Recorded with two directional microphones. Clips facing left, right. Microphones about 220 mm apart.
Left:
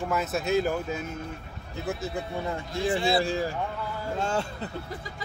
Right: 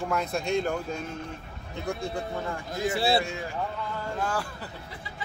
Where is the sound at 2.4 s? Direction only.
25° left (ahead or behind).